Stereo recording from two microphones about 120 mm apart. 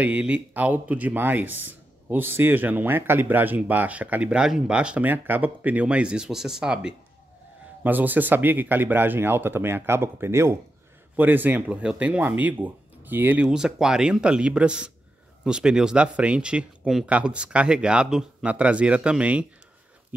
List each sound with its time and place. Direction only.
0.0 s speech: 10° right (ahead or behind)